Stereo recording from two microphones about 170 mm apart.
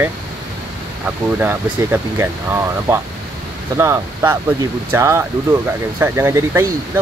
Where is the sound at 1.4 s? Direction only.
10° right (ahead or behind).